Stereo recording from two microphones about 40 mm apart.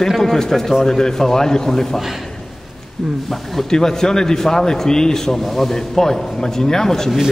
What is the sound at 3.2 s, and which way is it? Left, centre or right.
A man's voice, centre.